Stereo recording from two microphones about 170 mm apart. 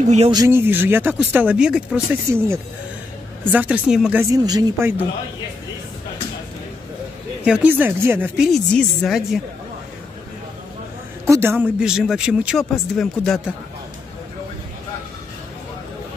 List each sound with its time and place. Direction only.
0.0 s speech: 45° right (ahead or behind)
0.3 s speech: 20° right (ahead or behind)
3.5 s speech: 10° right (ahead or behind)
4.2 s speech: 20° right (ahead or behind)
7.4 s speech: 5° right (ahead or behind)
8.5 s a man's voice: centre (ahead or behind)
11.2 s a man's voice: 15° right (ahead or behind); by 13.4 s centre (ahead or behind)